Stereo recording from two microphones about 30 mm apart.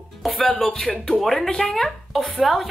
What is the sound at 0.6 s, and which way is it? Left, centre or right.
Speech, left.